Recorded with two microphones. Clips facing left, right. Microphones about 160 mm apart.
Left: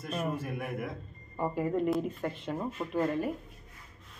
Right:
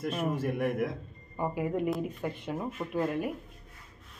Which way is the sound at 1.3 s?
10° right (ahead or behind).